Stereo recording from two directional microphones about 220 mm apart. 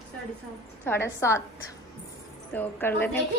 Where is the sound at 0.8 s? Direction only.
10° left (ahead or behind).